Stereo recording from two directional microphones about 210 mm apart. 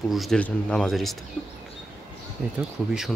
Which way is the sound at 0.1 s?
Centre (ahead or behind).